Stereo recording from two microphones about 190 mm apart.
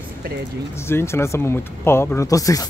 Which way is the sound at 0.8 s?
15° left (ahead or behind).